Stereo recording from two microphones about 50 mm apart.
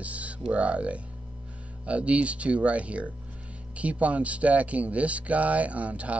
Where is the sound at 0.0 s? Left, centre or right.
Right.